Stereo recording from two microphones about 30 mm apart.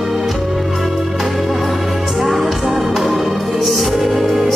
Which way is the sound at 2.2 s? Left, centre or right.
Centre.